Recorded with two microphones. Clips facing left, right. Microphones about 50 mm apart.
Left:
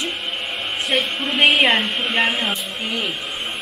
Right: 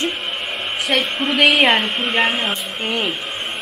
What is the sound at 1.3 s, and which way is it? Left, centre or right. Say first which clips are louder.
Speech: right 1 dB; right.